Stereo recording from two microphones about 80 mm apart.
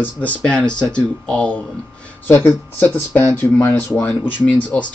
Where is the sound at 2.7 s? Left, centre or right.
Left.